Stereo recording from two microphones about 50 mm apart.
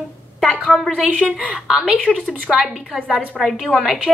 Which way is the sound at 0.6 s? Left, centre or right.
Centre.